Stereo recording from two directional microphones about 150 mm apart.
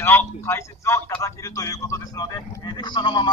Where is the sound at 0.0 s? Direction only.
15° left (ahead or behind).